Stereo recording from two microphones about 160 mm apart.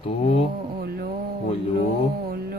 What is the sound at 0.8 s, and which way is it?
Mantra, 80° right.